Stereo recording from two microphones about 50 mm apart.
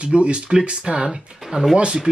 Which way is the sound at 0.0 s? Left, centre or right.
Right.